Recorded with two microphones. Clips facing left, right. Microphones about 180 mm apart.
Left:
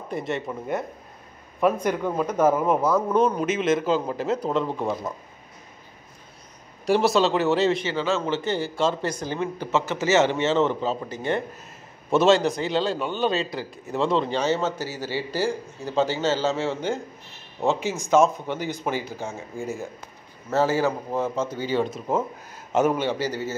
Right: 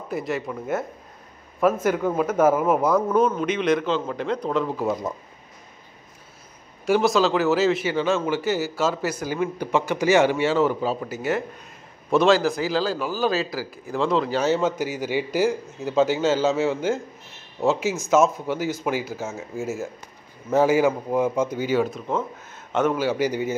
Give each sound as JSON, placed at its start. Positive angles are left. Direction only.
{"t": 0.1, "sound": "a man's voice", "side_deg": 0}
{"t": 1.6, "sound": "a man's voice", "side_deg": -5}
{"t": 6.9, "sound": "a man's voice", "side_deg": 0}
{"t": 7.9, "sound": "a man's voice", "side_deg": -15}
{"t": 22.7, "sound": "a man's voice", "side_deg": 5}
{"t": 22.9, "sound": "speech", "side_deg": -10}